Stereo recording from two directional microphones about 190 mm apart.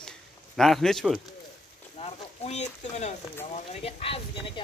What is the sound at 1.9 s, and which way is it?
Speech, 35° left (ahead or behind).